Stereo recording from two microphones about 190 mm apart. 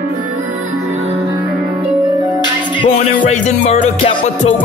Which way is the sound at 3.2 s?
35° left (ahead or behind).